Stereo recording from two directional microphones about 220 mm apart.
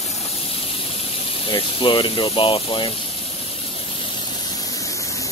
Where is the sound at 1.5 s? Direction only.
25° left (ahead or behind).